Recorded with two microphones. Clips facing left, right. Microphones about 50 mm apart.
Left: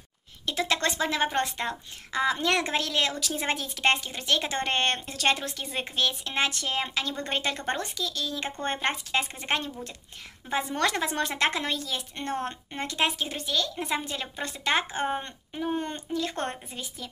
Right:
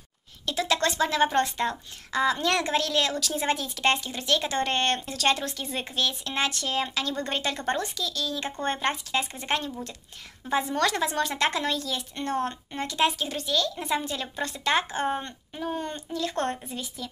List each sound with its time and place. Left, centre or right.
0.5 s speech: left
15.0 s speech: centre
15.6 s speech: left